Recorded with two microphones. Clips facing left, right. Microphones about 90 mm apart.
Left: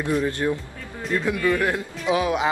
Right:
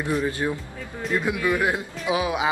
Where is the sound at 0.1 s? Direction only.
10° right (ahead or behind).